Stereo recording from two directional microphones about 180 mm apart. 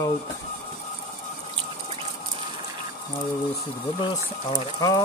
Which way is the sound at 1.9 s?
30° right (ahead or behind).